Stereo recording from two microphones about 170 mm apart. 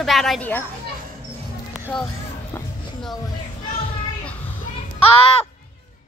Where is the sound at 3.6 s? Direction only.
30° left (ahead or behind).